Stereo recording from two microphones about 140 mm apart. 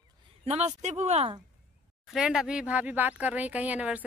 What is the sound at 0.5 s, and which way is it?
Speech, 50° right (ahead or behind).